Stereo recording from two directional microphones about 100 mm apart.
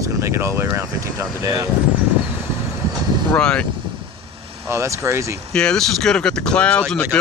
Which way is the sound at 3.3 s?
10° left (ahead or behind).